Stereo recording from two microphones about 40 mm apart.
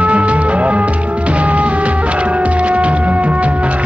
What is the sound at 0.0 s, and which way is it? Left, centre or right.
Music, right.